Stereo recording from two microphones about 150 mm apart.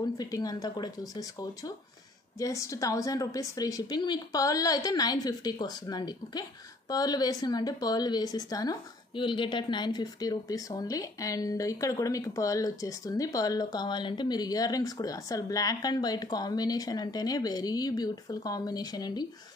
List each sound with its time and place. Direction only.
0.0 s speech: 25° left (ahead or behind)